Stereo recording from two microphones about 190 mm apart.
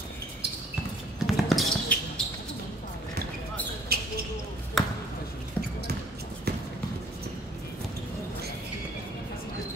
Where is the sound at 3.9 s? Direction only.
55° right (ahead or behind).